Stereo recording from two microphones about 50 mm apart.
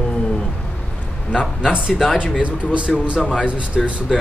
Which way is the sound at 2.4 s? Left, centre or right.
Right.